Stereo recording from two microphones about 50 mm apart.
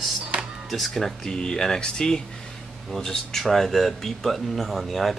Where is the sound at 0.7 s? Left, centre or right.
Centre.